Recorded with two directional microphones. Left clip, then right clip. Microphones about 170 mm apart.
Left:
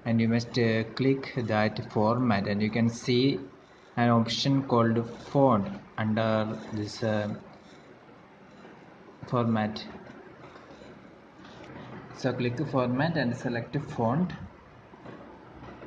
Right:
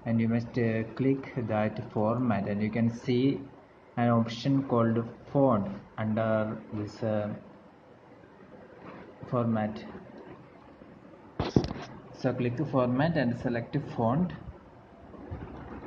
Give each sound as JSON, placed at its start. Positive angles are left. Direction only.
{"t": 0.0, "sound": "speech", "side_deg": 15}
{"t": 9.2, "sound": "speech", "side_deg": 15}
{"t": 12.2, "sound": "speech", "side_deg": 5}